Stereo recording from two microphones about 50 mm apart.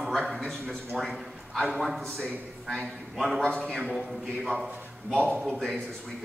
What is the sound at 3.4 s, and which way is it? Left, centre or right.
Speech, centre.